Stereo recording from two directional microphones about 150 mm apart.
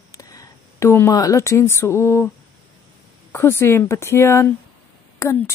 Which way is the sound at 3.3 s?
15° left (ahead or behind).